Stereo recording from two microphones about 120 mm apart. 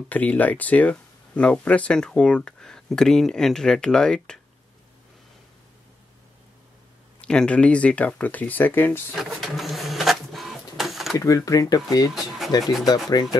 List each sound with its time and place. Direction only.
0.1 s speech: 15° left (ahead or behind)
7.2 s speech: 10° left (ahead or behind)
9.1 s printer: centre (ahead or behind)
11.1 s speech: 30° left (ahead or behind)